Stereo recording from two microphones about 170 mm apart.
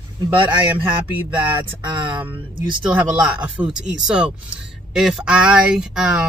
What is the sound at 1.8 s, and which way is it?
Speech, 30° right (ahead or behind).